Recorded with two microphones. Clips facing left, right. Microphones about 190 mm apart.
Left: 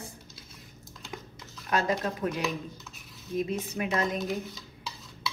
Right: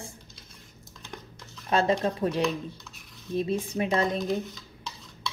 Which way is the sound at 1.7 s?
30° right (ahead or behind).